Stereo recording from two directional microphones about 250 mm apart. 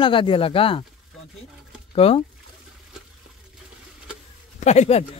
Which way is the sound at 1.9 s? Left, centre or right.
Left.